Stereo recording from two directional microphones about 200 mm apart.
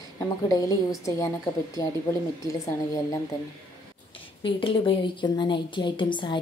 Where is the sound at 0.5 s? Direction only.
20° left (ahead or behind).